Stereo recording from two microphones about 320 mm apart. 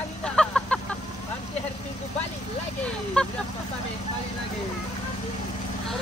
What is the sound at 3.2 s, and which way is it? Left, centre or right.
Speech, centre.